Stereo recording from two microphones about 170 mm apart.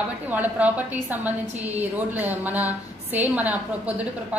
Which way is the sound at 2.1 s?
10° right (ahead or behind).